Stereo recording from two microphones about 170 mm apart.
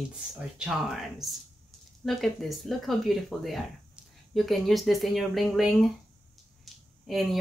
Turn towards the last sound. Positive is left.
turn(degrees=0)  # may be behind; listen again after turning